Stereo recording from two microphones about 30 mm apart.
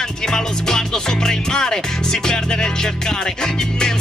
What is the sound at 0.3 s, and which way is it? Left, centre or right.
Music, left.